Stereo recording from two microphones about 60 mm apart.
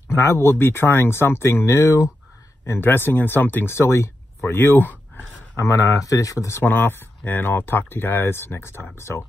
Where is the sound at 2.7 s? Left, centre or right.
Left.